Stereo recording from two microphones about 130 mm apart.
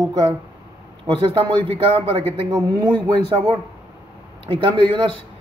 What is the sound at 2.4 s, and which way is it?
Speech, 35° right (ahead or behind).